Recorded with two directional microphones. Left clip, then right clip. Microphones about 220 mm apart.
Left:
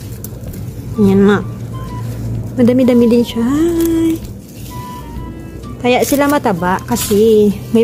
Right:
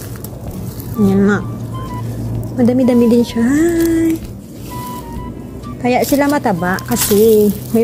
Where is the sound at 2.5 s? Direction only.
15° left (ahead or behind).